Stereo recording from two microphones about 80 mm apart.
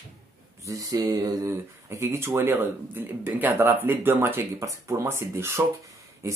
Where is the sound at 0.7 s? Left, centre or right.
Right.